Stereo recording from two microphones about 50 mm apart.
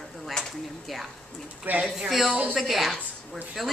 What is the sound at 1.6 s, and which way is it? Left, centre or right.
Speech, right.